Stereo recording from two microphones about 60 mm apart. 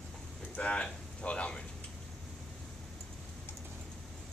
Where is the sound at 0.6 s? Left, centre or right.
Centre.